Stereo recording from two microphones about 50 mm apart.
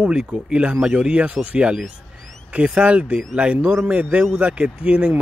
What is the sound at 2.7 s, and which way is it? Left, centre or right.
Speech, right.